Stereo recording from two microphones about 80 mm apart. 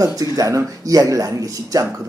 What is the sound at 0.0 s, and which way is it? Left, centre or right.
Speech, right.